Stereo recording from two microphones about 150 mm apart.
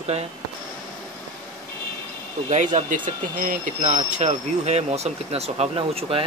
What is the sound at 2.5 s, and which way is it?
Speech, 55° right (ahead or behind).